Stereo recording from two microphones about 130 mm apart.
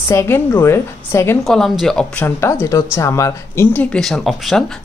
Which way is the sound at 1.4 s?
Centre (ahead or behind).